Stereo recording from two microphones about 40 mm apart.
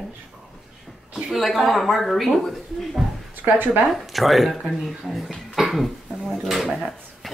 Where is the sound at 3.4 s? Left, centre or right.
Right.